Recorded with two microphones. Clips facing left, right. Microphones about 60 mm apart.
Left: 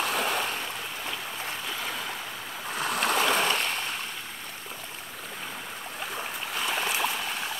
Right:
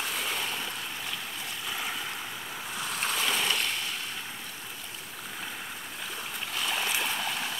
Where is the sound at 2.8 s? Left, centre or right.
Left.